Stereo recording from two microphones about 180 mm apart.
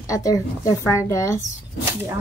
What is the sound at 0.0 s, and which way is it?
A woman's voice, 20° left (ahead or behind).